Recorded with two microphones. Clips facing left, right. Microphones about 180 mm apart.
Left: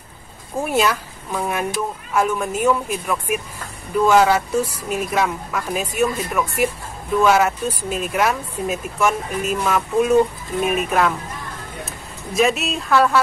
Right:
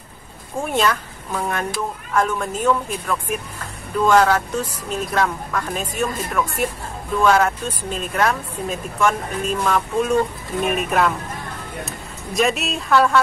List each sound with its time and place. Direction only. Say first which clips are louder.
0.6 s speech: left 1 dB; 10° left (ahead or behind)